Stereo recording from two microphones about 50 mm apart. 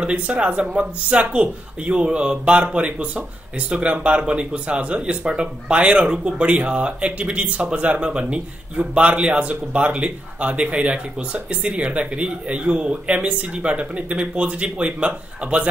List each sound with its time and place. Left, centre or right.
0.0 s a man's voice: right
2.5 s a man's voice: right